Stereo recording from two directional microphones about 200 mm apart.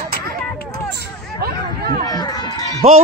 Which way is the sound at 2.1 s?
20° left (ahead or behind).